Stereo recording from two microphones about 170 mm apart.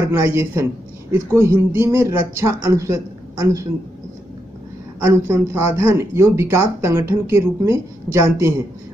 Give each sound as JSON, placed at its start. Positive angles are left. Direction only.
{"t": 0.1, "sound": "speech", "side_deg": -15}
{"t": 5.3, "sound": "speech", "side_deg": -15}